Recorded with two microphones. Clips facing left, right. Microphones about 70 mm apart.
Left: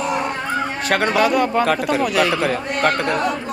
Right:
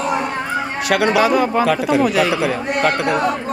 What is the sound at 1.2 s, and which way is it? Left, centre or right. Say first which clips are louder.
Speech: right 2 dB; centre.